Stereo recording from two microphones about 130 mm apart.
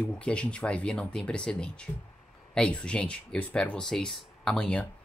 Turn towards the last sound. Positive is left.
turn(degrees=5)  # may be behind; listen again after turning